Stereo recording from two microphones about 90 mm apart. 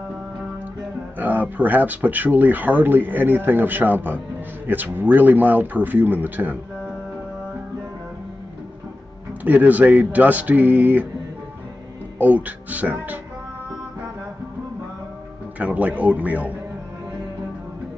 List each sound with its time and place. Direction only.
1.1 s speech: 20° right (ahead or behind)
9.4 s speech: 20° right (ahead or behind)
12.2 s speech: 15° right (ahead or behind)
15.6 s speech: 15° right (ahead or behind)